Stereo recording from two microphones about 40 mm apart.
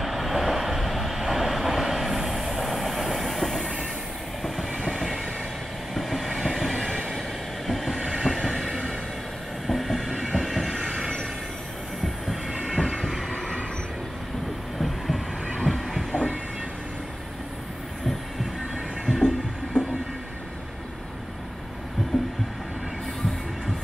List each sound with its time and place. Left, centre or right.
0.0 s train: centre
3.5 s train: left
4.4 s train: centre
8.5 s train: centre
12.7 s train: centre
13.3 s train: centre
14.8 s train: centre
15.5 s a sound: centre
19.0 s a sound: centre
19.7 s a sound: left
22.1 s heart sounds: centre